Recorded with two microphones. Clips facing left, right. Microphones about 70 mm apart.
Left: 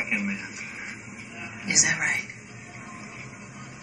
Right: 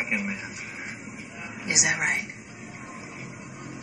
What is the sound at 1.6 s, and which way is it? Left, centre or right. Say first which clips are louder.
Speech: even; centre.